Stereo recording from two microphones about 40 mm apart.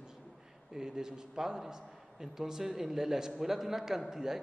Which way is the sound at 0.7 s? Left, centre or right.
Centre.